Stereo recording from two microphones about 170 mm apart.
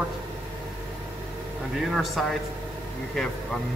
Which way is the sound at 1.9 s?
Centre (ahead or behind).